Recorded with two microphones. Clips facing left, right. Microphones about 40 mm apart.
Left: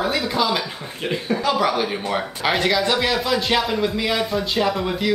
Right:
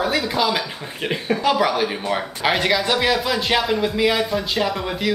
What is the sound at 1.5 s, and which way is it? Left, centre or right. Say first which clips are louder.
Speech: right 1 dB; centre.